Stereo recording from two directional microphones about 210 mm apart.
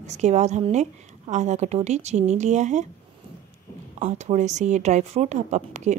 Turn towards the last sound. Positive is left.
turn(degrees=-35)  # may be behind; listen again after turning